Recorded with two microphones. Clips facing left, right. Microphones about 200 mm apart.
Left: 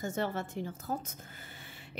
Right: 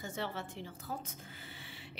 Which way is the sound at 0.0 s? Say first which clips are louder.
Left 6 dB; 45° left (ahead or behind).